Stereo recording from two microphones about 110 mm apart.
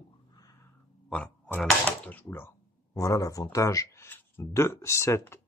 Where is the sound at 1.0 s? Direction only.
10° left (ahead or behind).